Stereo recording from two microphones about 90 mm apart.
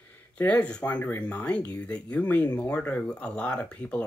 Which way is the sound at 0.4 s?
15° left (ahead or behind).